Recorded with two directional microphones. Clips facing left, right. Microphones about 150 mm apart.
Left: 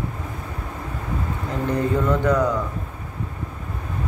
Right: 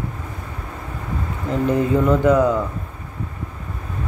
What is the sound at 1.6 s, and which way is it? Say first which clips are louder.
Speech: right 4 dB; 20° right (ahead or behind).